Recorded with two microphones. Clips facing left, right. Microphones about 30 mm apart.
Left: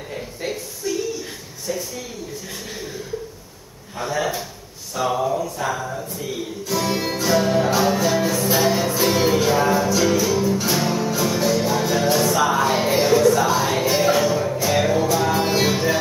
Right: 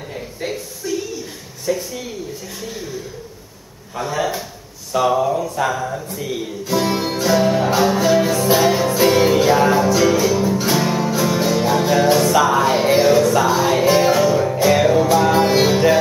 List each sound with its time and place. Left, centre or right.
0.1 s a sound: centre
1.7 s a sound: right
5.0 s speech: centre
5.4 s mantra: centre
6.1 s music: centre
12.4 s music: centre